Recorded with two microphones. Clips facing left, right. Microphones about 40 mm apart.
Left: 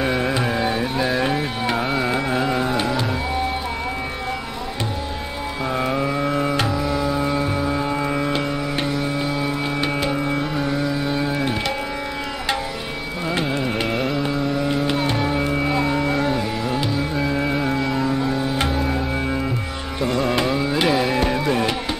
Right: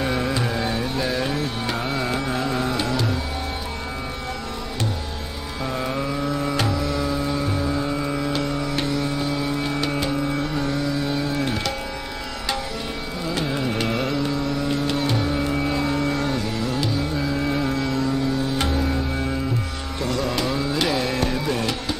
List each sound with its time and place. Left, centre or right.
0.0 s music: centre
5.7 s music: left
6.2 s music: left
6.5 s music: centre
13.3 s carnatic music: left
20.0 s music: left